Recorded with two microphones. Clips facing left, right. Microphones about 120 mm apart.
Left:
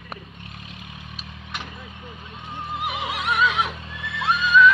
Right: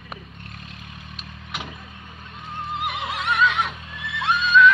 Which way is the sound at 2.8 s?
10° left (ahead or behind).